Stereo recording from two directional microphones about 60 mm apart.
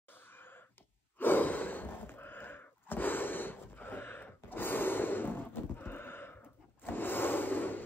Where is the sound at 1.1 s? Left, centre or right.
Left.